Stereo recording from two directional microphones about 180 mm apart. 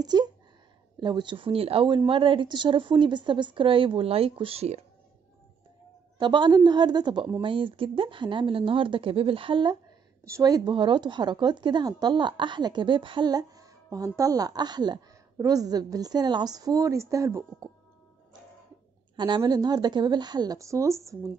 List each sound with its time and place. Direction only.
0.0 s speech: 20° right (ahead or behind)
6.1 s speech: 25° right (ahead or behind)
19.1 s speech: 25° right (ahead or behind)